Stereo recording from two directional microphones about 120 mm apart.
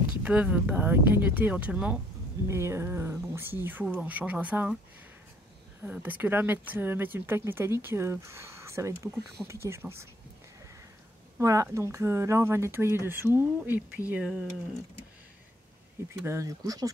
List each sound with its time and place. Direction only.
0.2 s speech: 10° right (ahead or behind)
2.4 s speech: 25° right (ahead or behind)
5.9 s speech: 15° right (ahead or behind)
11.3 s speech: 25° right (ahead or behind)
16.1 s speech: 25° right (ahead or behind)